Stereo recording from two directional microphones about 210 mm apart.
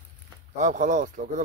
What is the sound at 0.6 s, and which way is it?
Speech, 35° right (ahead or behind).